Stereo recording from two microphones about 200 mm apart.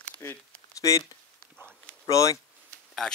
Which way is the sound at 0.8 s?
15° left (ahead or behind).